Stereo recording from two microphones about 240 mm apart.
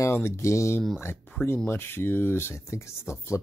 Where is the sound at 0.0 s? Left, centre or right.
Centre.